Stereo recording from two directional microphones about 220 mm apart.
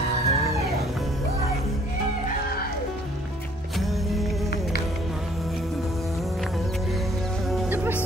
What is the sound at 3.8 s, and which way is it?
Music, centre (ahead or behind).